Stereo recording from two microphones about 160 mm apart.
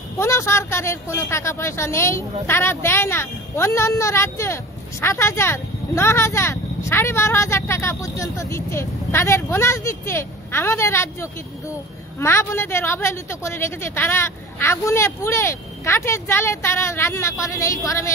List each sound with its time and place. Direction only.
0.2 s speech: 15° left (ahead or behind)